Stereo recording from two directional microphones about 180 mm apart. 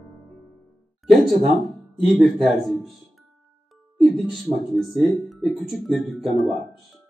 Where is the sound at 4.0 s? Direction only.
Centre (ahead or behind).